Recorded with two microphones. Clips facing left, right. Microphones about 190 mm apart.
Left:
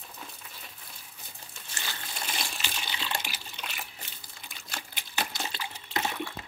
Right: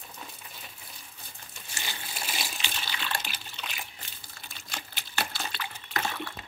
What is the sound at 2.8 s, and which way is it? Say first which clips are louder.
Water: even; 20° left (ahead or behind).